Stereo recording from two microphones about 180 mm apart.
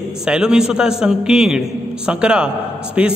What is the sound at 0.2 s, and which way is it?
A man's voice, 5° right (ahead or behind).